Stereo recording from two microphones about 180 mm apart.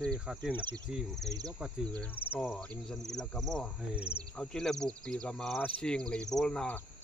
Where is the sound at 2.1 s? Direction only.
10° left (ahead or behind).